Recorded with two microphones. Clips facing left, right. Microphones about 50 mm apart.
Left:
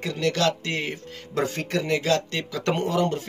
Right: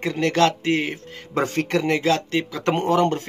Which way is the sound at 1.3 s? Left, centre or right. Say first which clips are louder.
Right 4 dB; right.